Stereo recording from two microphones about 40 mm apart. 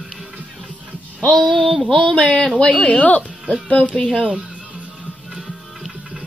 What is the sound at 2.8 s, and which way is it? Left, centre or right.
Speech, left.